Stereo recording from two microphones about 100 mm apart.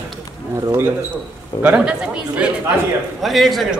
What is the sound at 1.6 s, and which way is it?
Speech, 15° right (ahead or behind).